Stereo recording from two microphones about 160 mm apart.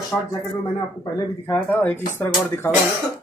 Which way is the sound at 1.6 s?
10° left (ahead or behind).